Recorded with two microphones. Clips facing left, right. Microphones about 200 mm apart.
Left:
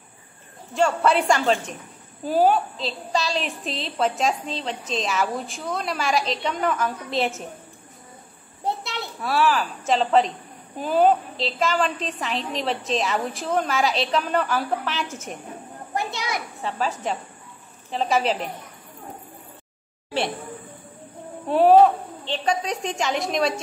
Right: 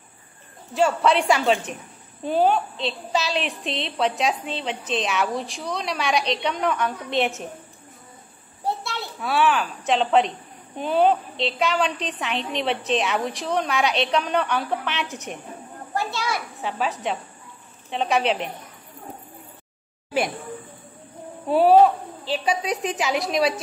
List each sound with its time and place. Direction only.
0.7 s a woman's voice: centre (ahead or behind)
8.6 s children playing: 20° left (ahead or behind)
9.2 s a woman's voice: centre (ahead or behind)
15.9 s a child's voice: 20° left (ahead or behind)
16.5 s a woman's voice: centre (ahead or behind)
21.5 s a woman's voice: 5° right (ahead or behind)